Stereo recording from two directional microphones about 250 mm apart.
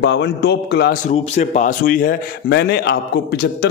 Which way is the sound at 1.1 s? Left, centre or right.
Left.